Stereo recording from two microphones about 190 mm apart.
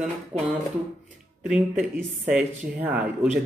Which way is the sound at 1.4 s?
5° right (ahead or behind).